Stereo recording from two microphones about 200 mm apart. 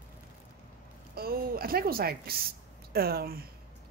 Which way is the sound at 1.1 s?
50° right (ahead or behind).